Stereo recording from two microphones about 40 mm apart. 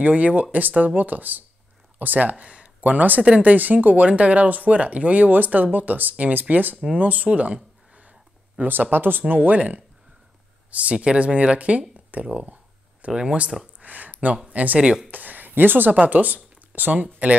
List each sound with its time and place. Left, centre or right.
0.0 s speech: right
2.4 s a sound: right
2.8 s speech: right
3.2 s speech: right
3.5 s speech: right
7.2 s a sound: right
8.6 s speech: right
8.9 s speech: right
9.3 s speech: right
9.6 s speech: right
13.1 s speech: right
13.7 s a sound: right
14.5 s speech: right
16.0 s speech: right